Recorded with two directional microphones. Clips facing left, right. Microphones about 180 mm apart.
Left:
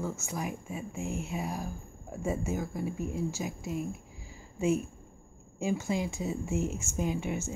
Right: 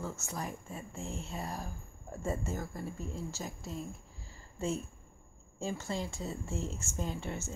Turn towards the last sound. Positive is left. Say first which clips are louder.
# left 6 dB
turn(degrees=15)  # may be behind; listen again after turning